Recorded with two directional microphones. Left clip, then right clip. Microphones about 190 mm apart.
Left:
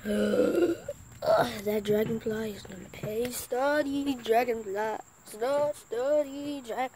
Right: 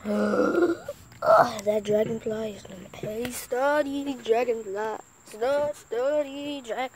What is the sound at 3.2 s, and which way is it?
Speech, 15° right (ahead or behind).